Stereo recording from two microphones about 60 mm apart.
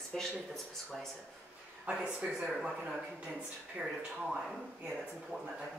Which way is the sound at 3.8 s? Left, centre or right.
Right.